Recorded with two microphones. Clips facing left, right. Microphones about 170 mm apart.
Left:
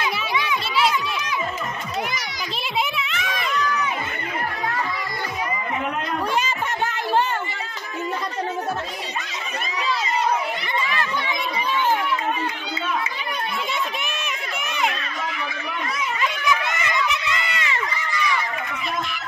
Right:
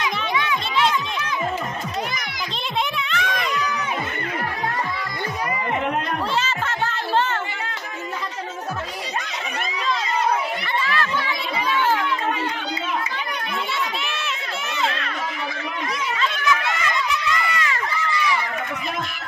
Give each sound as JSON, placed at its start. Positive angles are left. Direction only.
{"t": 0.5, "sound": "music", "side_deg": 10}
{"t": 3.1, "sound": "a sound", "side_deg": 0}
{"t": 16.2, "sound": "run", "side_deg": 20}